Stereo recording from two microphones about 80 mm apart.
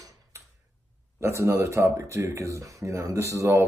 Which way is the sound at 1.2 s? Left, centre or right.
Right.